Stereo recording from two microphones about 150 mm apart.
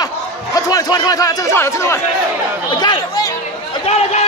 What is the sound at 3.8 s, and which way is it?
Speech, 45° left (ahead or behind).